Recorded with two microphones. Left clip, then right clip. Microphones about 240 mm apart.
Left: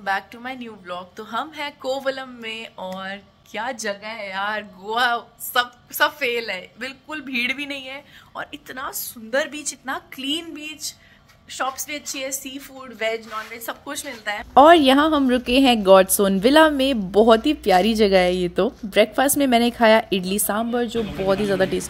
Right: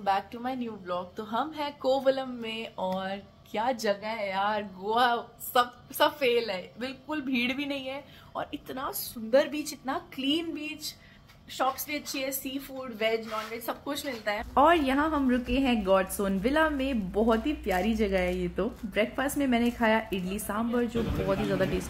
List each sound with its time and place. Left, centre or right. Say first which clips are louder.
0.0 s a woman's voice: left 3 dB; centre
14.5 s speech: left 11 dB; left